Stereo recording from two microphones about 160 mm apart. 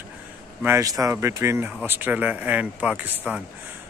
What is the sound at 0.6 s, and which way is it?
Speech, 15° right (ahead or behind).